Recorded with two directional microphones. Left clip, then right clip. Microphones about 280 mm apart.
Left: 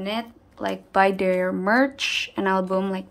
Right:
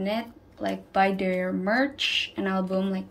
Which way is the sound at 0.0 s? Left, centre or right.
Centre.